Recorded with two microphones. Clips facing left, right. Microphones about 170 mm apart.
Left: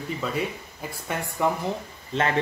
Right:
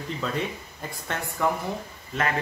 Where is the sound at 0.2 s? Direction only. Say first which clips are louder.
Even; 5° left (ahead or behind).